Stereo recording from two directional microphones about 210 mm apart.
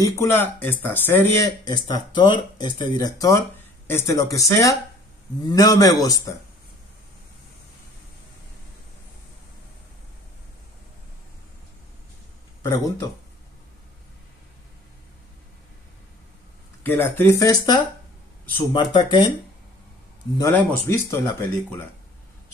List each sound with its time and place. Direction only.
0.0 s speech: 10° left (ahead or behind)
12.6 s speech: 15° left (ahead or behind)
16.8 s speech: 10° left (ahead or behind)
20.3 s speech: 15° left (ahead or behind)